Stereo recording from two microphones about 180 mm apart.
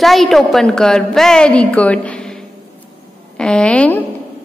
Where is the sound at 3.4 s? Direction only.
5° left (ahead or behind).